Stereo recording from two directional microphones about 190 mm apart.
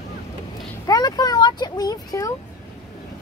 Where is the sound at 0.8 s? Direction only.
20° left (ahead or behind).